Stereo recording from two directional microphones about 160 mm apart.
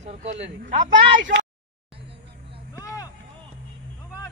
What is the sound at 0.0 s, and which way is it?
Speech, 40° right (ahead or behind).